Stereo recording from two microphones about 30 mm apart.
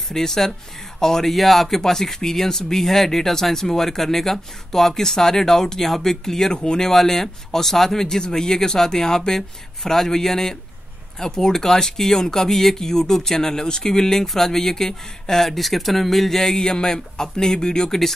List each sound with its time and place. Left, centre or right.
0.1 s speech: centre
6.5 s speech: left
6.8 s speech: centre
11.6 s speech: centre
16.4 s speech: left
17.8 s speech: centre